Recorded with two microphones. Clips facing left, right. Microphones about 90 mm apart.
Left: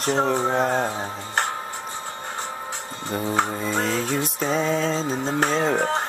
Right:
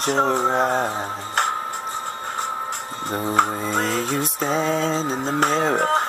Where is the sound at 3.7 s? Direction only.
50° right (ahead or behind).